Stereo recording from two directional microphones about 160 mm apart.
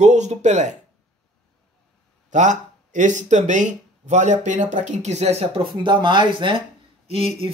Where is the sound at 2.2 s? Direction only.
50° right (ahead or behind).